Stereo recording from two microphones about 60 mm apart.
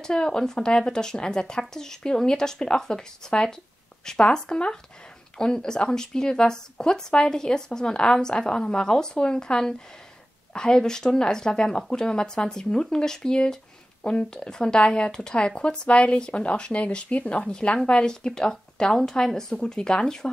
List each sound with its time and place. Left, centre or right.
0.0 s speech: centre